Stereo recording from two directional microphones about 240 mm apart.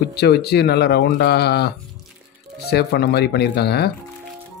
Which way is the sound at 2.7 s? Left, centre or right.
Left.